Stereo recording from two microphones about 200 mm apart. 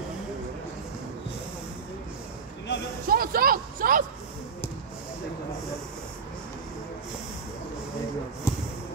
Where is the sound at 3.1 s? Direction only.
45° right (ahead or behind).